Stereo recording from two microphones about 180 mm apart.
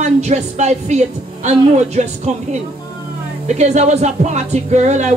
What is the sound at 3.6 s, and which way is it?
Speech, 40° right (ahead or behind).